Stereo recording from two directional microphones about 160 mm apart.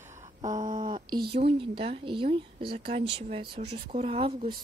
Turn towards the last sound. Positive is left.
turn(degrees=-35)  # may be behind; listen again after turning